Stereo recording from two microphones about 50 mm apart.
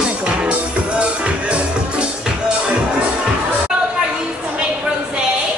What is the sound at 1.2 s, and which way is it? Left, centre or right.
Music, right.